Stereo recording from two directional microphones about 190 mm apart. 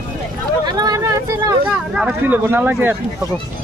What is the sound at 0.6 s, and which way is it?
Speech, 20° right (ahead or behind).